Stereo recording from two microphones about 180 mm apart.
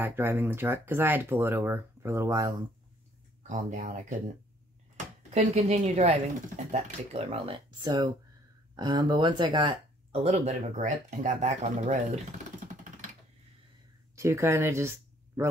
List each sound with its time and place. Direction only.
0.0 s speech: 10° right (ahead or behind)
3.4 s speech: 45° right (ahead or behind)
5.3 s speech: 40° right (ahead or behind)
14.1 s speech: 15° right (ahead or behind)